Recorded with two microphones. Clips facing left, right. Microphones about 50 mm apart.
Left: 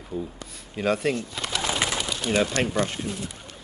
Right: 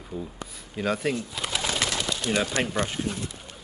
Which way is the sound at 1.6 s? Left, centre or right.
Centre.